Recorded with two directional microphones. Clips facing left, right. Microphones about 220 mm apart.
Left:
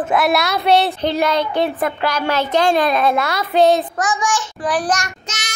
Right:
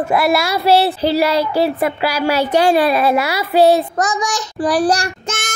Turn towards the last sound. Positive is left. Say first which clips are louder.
# right 8 dB
turn(degrees=-50)  # may be behind; listen again after turning